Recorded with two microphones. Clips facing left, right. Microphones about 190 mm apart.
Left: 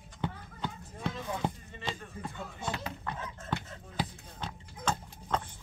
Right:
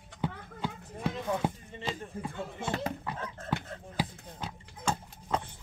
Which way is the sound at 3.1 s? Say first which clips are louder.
Right 1 dB; 5° right (ahead or behind).